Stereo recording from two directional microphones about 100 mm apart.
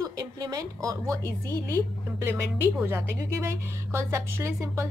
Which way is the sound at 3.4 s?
25° right (ahead or behind).